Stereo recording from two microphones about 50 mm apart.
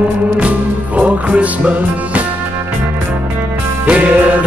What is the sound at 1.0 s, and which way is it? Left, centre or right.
Music, right.